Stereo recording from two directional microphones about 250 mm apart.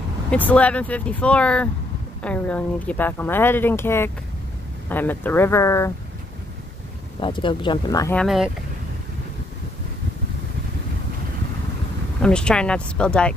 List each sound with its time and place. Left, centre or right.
0.3 s speech: centre
7.2 s speech: centre
12.2 s speech: centre